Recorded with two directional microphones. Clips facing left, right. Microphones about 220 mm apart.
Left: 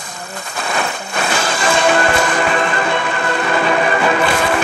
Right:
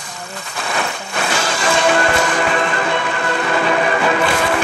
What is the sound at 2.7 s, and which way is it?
Music, 55° left (ahead or behind).